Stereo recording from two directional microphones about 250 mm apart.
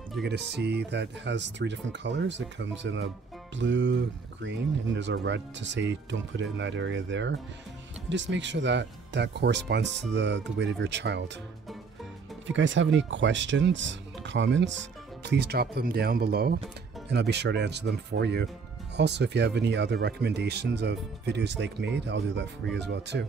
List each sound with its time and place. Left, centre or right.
0.2 s speech: right
12.4 s speech: right